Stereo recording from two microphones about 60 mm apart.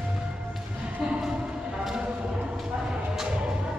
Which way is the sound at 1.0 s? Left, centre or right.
Centre.